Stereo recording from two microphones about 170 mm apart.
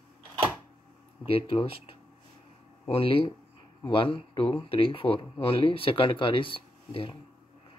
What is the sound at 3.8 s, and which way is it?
Speech, 30° left (ahead or behind).